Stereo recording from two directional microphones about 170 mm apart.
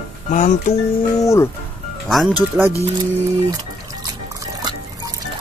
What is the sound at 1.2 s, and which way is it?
Speech, 20° left (ahead or behind).